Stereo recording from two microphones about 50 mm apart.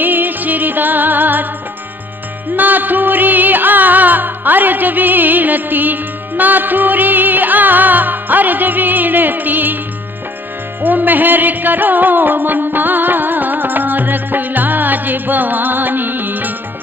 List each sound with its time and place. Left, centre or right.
0.0 s music: right
2.5 s music: right
10.8 s music: right